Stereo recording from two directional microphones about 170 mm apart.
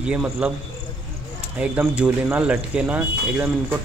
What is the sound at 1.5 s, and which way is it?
Speech, 5° right (ahead or behind).